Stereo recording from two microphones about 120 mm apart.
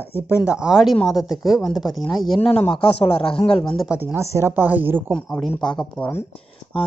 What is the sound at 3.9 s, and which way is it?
Speech, 20° right (ahead or behind).